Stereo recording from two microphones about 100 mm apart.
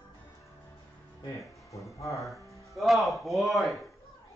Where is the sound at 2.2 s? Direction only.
Centre (ahead or behind).